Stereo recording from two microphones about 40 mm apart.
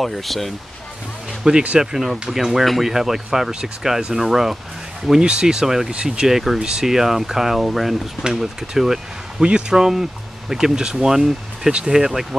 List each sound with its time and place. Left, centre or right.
0.0 s speech: centre
1.5 s speech: centre
5.2 s speech: centre
6.6 s speech: centre
9.4 s speech: right
9.8 s speech: centre